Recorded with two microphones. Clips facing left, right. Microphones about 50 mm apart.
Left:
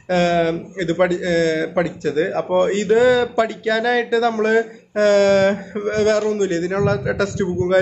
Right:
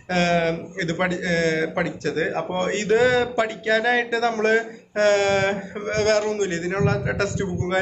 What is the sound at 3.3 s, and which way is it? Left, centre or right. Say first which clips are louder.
Speech: left 3 dB; right.